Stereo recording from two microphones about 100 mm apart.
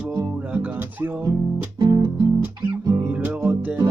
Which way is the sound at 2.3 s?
25° right (ahead or behind).